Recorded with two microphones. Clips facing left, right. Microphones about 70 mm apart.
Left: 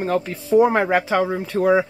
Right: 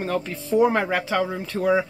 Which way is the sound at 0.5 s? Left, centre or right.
Centre.